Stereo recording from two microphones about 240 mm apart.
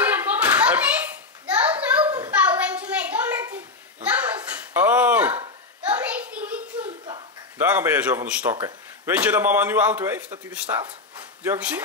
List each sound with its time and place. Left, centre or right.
0.0 s hands: centre
1.4 s a sound: centre
7.5 s a man's voice: centre
8.5 s speech: centre
9.1 s a man's voice: centre